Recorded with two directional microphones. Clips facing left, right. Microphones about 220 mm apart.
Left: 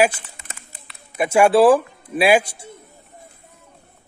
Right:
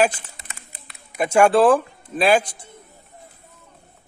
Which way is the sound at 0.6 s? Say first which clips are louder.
Even; 45° right (ahead or behind).